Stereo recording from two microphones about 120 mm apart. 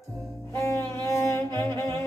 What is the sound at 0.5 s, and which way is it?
Music, 25° left (ahead or behind).